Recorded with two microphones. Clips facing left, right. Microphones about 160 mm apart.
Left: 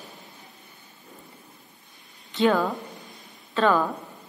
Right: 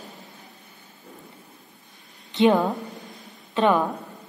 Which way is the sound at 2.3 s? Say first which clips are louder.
Right 3 dB; 20° right (ahead or behind).